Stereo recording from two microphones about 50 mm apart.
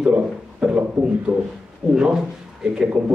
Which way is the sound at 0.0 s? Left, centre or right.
Centre.